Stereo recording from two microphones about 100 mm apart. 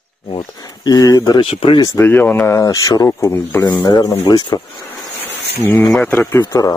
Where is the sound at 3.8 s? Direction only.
35° left (ahead or behind).